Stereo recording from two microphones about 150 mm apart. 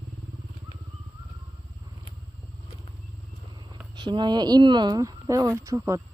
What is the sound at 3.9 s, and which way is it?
Speech, 30° right (ahead or behind).